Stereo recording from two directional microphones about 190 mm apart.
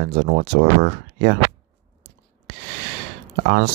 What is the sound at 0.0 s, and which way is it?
Speech, 65° right (ahead or behind).